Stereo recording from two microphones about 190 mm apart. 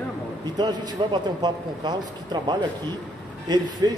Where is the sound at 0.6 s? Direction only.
20° right (ahead or behind).